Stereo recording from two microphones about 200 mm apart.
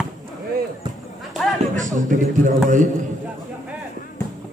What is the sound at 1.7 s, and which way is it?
Speech, 40° right (ahead or behind).